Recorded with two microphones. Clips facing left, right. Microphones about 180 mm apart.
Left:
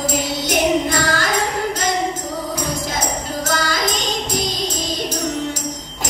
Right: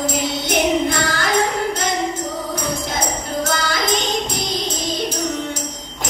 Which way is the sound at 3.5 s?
60° right (ahead or behind).